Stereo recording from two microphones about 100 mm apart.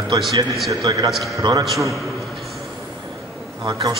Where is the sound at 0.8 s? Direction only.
40° right (ahead or behind).